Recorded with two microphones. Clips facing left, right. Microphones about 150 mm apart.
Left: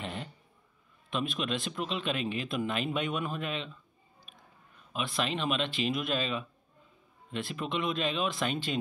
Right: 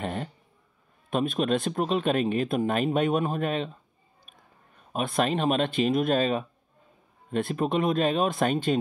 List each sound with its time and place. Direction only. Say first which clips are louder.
0.0 s a sound: right 7 dB; 45° right (ahead or behind)
1.1 s speech: right 8 dB; 50° right (ahead or behind)
4.9 s speech: right 7 dB; 45° right (ahead or behind)